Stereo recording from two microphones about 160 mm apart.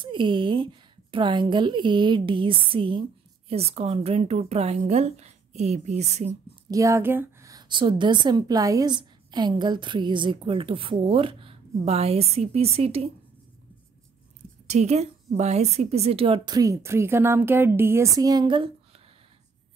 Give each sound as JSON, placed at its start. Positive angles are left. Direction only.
{"t": 0.0, "sound": "a woman's voice", "side_deg": -30}
{"t": 6.7, "sound": "a woman's voice", "side_deg": -20}
{"t": 14.7, "sound": "a woman's voice", "side_deg": -40}
{"t": 16.5, "sound": "speech", "side_deg": -20}